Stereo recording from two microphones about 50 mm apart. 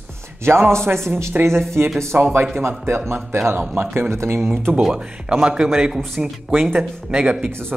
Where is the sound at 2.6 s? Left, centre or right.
Right.